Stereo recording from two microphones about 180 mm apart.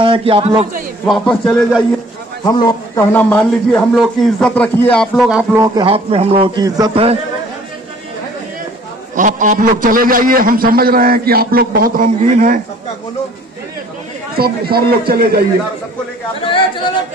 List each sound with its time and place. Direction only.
0.0 s a man's voice: 30° right (ahead or behind)
1.0 s speech: 5° left (ahead or behind)
2.4 s a man's voice: 20° left (ahead or behind); by 5.7 s 10° right (ahead or behind)
5.8 s a man's voice: 30° right (ahead or behind)
9.1 s a man's voice: 45° right (ahead or behind)
14.3 s a man's voice: 55° right (ahead or behind)
16.4 s speech: 30° left (ahead or behind)